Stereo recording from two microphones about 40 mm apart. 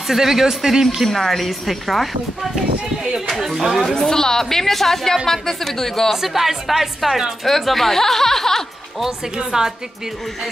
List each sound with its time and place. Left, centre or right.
0.1 s speech: centre
1.0 s a woman's voice: centre
3.3 s a woman's voice: centre
3.9 s a woman's voice: centre
6.1 s a woman's voice: centre
7.4 s a woman's voice: centre
9.4 s speech: centre